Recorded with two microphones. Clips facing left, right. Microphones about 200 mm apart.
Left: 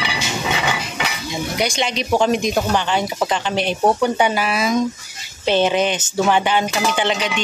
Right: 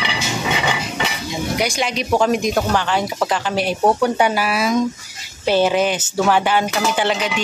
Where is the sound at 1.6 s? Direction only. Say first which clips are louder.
Left 2 dB; 5° right (ahead or behind).